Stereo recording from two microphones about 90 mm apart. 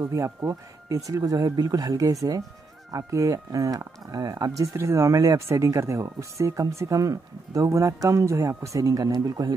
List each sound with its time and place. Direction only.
0.0 s speech: 35° right (ahead or behind)
4.7 s speech: 35° right (ahead or behind)